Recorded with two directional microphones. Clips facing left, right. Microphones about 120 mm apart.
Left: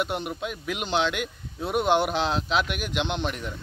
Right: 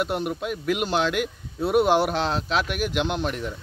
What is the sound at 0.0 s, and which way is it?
A man's voice, centre (ahead or behind).